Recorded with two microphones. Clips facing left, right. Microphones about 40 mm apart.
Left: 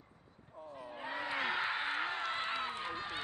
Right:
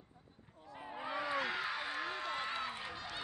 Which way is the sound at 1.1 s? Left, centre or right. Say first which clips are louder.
Left 1 dB; left.